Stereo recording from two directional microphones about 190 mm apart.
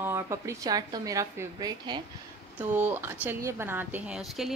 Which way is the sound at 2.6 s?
10° right (ahead or behind).